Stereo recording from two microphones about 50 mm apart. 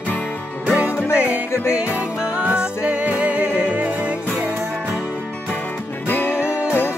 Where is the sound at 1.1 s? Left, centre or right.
Right.